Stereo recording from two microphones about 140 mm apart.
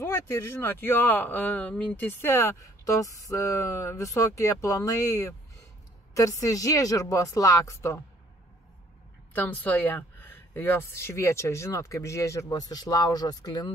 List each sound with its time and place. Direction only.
0.0 s speech: 15° left (ahead or behind)
9.3 s speech: 10° left (ahead or behind); by 13.7 s 30° left (ahead or behind)